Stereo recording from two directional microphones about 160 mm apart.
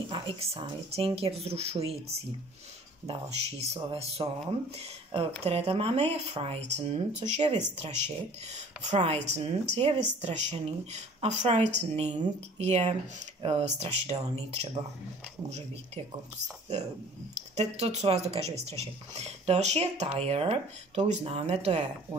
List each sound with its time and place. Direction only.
0.1 s speech: 35° right (ahead or behind)
17.6 s speech: 40° right (ahead or behind)